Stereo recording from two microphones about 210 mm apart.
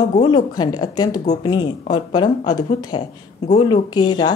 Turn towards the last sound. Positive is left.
turn(degrees=20)  # may be behind; listen again after turning